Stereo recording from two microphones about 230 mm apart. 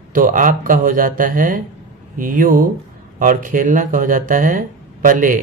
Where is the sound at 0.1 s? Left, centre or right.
Right.